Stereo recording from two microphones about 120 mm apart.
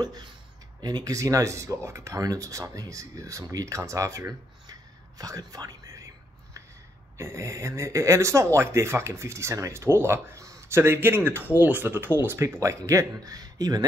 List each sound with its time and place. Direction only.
0.0 s speech: 30° right (ahead or behind)
7.2 s speech: 25° right (ahead or behind)